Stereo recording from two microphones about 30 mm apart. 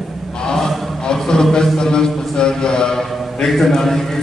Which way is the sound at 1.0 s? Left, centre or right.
Left.